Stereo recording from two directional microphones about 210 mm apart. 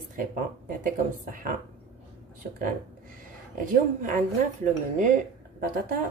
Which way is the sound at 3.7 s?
40° right (ahead or behind).